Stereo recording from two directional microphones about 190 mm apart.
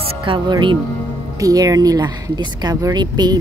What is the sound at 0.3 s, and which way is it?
Speech, 25° right (ahead or behind).